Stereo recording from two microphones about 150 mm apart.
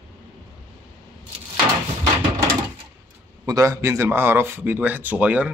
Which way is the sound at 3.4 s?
20° right (ahead or behind).